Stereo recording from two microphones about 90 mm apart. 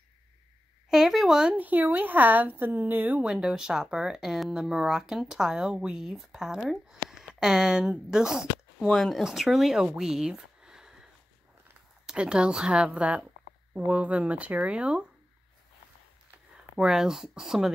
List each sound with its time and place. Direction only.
0.8 s a sound: 5° right (ahead or behind)
1.6 s a woman's voice: 20° right (ahead or behind)
3.3 s speech: 5° right (ahead or behind)
8.8 s speech: 5° left (ahead or behind)
12.1 s speech: 10° right (ahead or behind)
16.7 s speech: 5° right (ahead or behind)